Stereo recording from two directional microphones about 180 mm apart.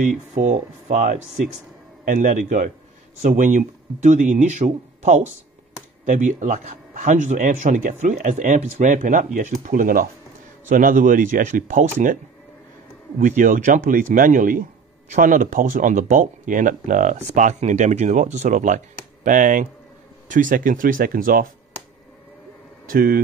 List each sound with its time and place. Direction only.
0.3 s speech: 40° right (ahead or behind)
13.2 s speech: 50° right (ahead or behind)
22.8 s speech: 55° right (ahead or behind)